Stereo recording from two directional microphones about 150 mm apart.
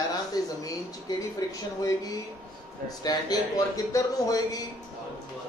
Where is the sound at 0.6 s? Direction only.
25° left (ahead or behind).